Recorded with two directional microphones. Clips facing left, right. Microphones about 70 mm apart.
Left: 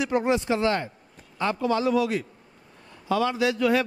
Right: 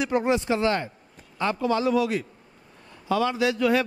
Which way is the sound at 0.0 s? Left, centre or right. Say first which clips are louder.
Even; right.